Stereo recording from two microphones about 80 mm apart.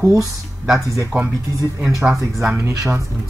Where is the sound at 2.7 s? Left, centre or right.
Right.